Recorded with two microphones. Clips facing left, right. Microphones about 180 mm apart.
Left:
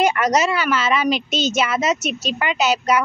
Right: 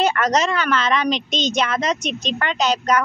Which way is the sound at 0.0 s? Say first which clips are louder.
Left 1 dB; 10° left (ahead or behind).